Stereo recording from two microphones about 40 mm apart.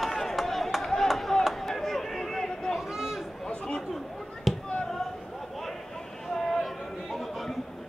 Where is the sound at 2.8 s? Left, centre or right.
Centre.